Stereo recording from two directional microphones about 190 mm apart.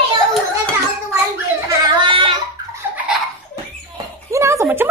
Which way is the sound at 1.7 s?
25° right (ahead or behind).